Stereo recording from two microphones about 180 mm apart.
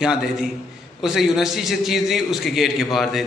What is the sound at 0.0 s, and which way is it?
A man's voice, 5° right (ahead or behind).